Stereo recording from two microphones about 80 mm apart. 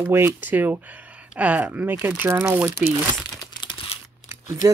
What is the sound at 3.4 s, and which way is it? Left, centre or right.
Crumpling, left.